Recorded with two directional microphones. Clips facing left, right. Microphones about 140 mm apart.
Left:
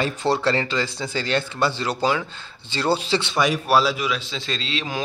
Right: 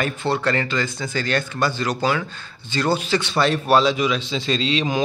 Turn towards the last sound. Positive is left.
turn(degrees=0)  # may be behind; listen again after turning